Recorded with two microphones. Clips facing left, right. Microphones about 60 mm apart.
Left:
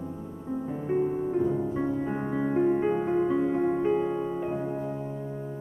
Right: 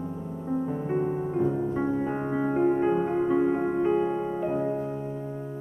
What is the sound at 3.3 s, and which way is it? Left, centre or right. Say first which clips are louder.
Music: right 1 dB; centre.